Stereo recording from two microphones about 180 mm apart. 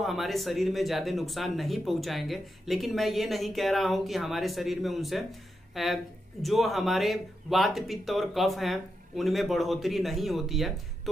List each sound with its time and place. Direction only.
0.0 s speech: centre (ahead or behind)